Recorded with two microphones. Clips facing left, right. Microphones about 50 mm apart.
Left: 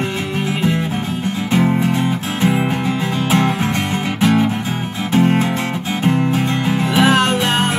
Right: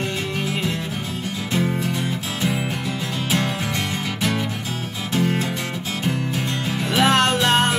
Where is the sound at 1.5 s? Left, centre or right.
Left.